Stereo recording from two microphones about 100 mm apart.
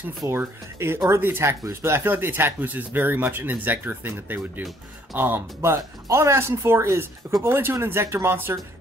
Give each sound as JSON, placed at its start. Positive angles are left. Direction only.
{"t": 0.3, "sound": "speech", "side_deg": -25}